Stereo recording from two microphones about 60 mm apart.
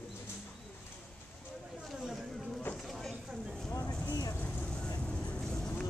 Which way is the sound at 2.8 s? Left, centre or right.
Centre.